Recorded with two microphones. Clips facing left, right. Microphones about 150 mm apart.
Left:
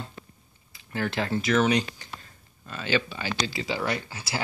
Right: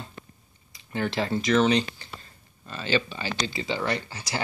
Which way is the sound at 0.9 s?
Centre (ahead or behind).